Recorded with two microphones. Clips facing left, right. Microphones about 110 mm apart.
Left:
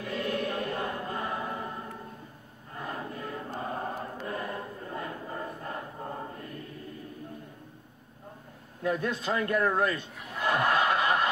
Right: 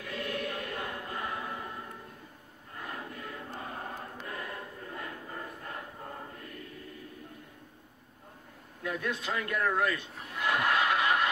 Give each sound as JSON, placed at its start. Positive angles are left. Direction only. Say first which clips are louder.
{"t": 0.0, "sound": "choir", "louder": "left 5 dB", "side_deg": 35}
{"t": 2.7, "sound": "choir", "louder": "left 4 dB", "side_deg": 30}
{"t": 8.8, "sound": "a man's voice", "louder": "left 5 dB", "side_deg": 35}
{"t": 10.3, "sound": "snicker", "louder": "left 3 dB", "side_deg": 30}